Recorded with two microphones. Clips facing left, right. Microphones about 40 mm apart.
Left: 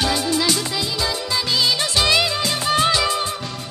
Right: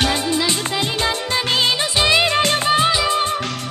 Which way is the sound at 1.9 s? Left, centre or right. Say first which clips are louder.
Right 2 dB; right.